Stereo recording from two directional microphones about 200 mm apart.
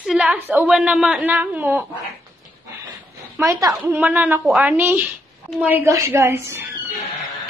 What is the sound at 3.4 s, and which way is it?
A woman's voice, 15° right (ahead or behind).